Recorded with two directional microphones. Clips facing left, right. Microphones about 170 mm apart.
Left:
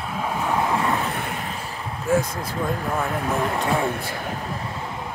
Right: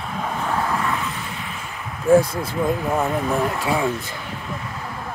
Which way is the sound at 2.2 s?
30° right (ahead or behind).